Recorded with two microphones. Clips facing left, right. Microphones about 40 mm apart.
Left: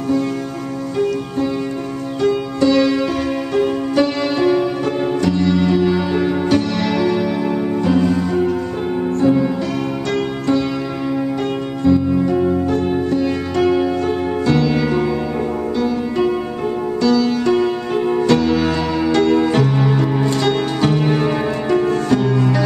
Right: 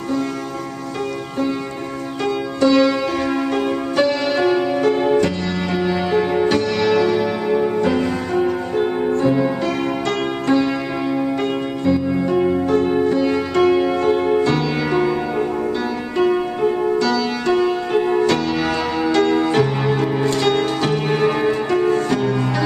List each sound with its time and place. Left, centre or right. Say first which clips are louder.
2.6 s music: even; centre; by 5.3 s right
5.9 s music: left 1 dB; centre
12.3 s music: even; right
18.2 s music: left 3 dB; centre